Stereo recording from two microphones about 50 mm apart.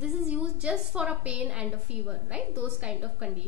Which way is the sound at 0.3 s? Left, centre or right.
Right.